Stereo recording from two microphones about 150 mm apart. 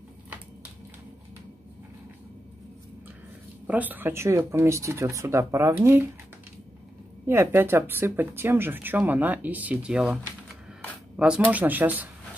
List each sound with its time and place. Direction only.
3.6 s speech: 10° right (ahead or behind)
7.2 s speech: 15° right (ahead or behind)
11.1 s speech: 5° right (ahead or behind)